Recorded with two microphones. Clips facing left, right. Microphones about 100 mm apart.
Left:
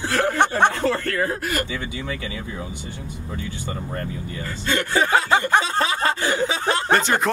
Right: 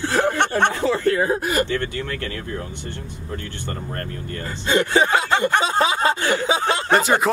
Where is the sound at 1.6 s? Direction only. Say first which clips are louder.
Right 5 dB; 10° left (ahead or behind).